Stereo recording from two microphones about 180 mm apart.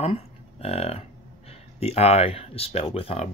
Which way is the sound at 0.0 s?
35° left (ahead or behind).